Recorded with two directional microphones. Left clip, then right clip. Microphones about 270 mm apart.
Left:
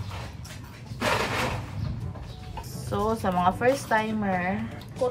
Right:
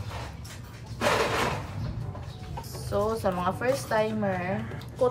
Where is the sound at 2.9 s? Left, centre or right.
Left.